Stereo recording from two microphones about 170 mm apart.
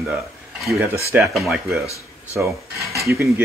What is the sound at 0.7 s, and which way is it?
Speech, 15° right (ahead or behind).